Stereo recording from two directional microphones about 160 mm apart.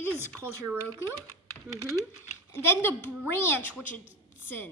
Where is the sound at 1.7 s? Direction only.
20° right (ahead or behind).